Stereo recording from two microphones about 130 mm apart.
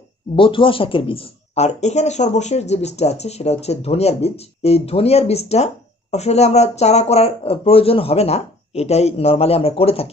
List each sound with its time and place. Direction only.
0.4 s speech: 40° left (ahead or behind)